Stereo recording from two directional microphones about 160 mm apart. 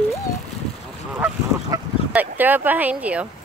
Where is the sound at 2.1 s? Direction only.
10° right (ahead or behind).